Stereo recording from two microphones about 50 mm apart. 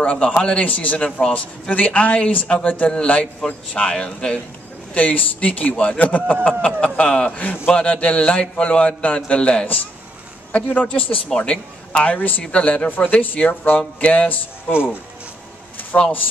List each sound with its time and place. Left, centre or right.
0.0 s a man's voice: left
4.9 s a man's voice: left
11.3 s speech: centre
12.0 s a man's voice: left
15.9 s a man's voice: left